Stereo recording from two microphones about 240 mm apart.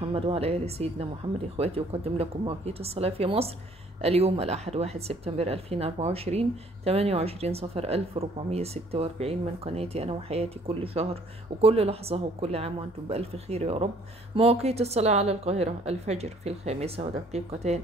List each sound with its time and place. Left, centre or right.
0.0 s speech: right